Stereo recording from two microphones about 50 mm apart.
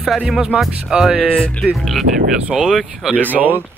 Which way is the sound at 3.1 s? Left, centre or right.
Right.